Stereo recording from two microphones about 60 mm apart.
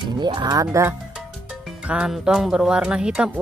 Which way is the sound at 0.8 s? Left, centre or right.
Right.